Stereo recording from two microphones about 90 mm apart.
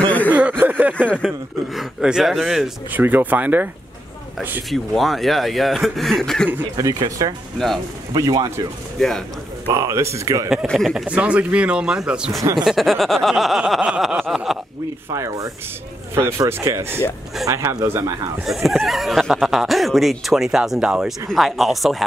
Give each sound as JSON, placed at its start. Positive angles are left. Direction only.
{"t": 0.3, "sound": "speech", "side_deg": -15}
{"t": 1.2, "sound": "speech", "side_deg": 0}
{"t": 2.9, "sound": "speech", "side_deg": -20}
{"t": 4.6, "sound": "speech", "side_deg": 0}
{"t": 7.2, "sound": "speech", "side_deg": -40}
{"t": 7.5, "sound": "speech", "side_deg": 5}
{"t": 8.2, "sound": "speech", "side_deg": -45}
{"t": 9.0, "sound": "speech", "side_deg": 5}
{"t": 9.7, "sound": "speech", "side_deg": -35}
{"t": 10.7, "sound": "speech", "side_deg": 5}
{"t": 11.1, "sound": "speech", "side_deg": -15}
{"t": 15.1, "sound": "speech", "side_deg": -35}
{"t": 18.4, "sound": "speech", "side_deg": 0}